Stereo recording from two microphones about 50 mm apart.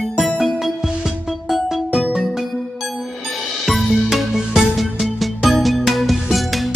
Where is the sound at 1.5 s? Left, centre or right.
Centre.